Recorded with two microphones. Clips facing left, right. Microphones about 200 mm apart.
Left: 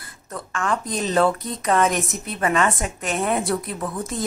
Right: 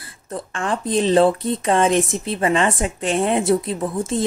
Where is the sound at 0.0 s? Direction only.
30° right (ahead or behind).